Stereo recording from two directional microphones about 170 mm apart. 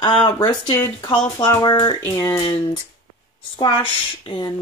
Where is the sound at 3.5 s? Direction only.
25° left (ahead or behind).